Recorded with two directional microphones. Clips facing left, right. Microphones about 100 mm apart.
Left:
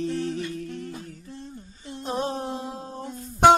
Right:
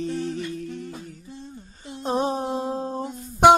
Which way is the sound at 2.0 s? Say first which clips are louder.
Right 4 dB; 20° right (ahead or behind).